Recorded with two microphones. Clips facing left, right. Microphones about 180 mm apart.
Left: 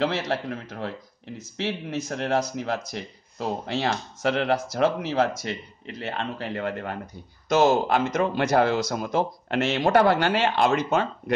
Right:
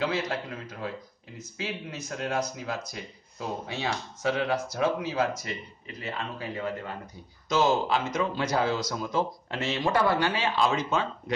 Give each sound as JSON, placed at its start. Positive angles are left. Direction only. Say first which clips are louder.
{"t": 0.0, "sound": "a man's voice", "louder": "left 4 dB", "side_deg": 75}
{"t": 7.4, "sound": "a man's voice", "louder": "left 5 dB", "side_deg": 55}